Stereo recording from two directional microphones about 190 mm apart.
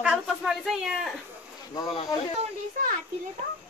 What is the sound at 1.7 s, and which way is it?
Speech, 20° left (ahead or behind).